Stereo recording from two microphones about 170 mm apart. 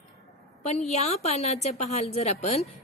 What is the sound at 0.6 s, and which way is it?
A woman's voice, 40° left (ahead or behind).